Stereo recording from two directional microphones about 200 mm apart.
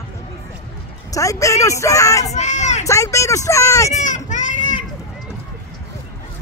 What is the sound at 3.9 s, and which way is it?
Children playing, 40° left (ahead or behind).